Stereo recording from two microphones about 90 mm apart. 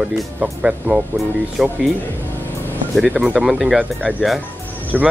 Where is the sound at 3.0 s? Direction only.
15° right (ahead or behind).